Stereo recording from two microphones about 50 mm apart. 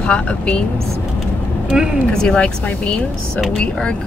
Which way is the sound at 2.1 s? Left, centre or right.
Centre.